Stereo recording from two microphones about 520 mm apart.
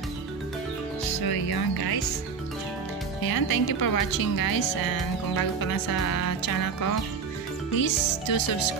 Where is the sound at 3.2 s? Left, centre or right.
Left.